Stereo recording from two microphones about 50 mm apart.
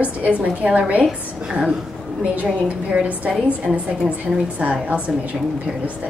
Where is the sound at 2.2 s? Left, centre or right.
Right.